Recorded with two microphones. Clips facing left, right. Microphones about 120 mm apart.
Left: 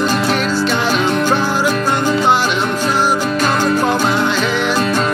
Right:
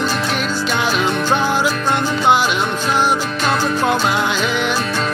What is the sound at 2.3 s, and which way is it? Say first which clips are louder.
Music: even; 5° right (ahead or behind).